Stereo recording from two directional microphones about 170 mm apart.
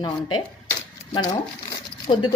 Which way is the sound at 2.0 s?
30° left (ahead or behind).